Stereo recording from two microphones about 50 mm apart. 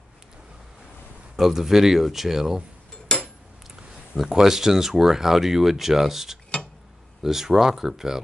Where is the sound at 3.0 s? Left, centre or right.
Centre.